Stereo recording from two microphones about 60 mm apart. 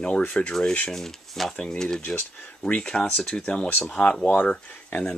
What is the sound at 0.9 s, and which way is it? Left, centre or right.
Speech, centre.